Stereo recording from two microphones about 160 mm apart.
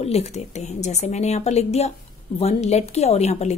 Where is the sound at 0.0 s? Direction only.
40° left (ahead or behind).